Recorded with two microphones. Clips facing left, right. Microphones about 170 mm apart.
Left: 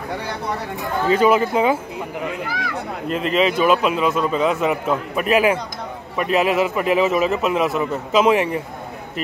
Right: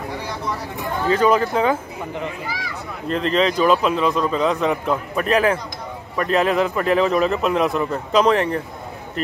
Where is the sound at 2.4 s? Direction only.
60° left (ahead or behind).